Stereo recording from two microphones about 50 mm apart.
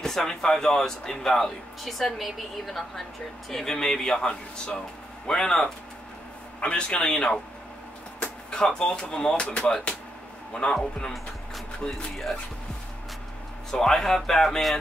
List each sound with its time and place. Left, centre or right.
0.0 s a man's voice: centre
8.5 s speech: centre
9.5 s a man's voice: left
13.7 s speech: centre